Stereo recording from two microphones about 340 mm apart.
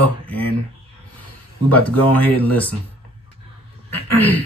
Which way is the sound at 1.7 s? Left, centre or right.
Centre.